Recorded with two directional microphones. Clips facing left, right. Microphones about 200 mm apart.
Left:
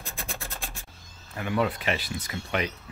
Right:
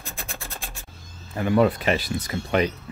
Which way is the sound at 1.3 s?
40° right (ahead or behind).